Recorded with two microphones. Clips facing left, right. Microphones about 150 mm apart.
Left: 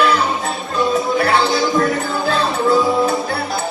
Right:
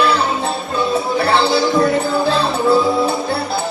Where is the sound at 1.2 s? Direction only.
30° right (ahead or behind).